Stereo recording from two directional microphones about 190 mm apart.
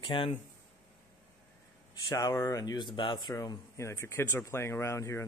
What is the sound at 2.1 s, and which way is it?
Speech, 20° left (ahead or behind).